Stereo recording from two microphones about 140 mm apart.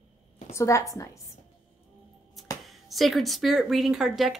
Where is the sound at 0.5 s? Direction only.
20° left (ahead or behind).